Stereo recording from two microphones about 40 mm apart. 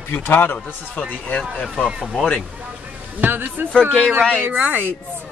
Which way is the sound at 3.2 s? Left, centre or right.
Right.